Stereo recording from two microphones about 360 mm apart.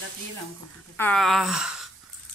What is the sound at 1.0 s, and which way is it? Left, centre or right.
Speech, centre.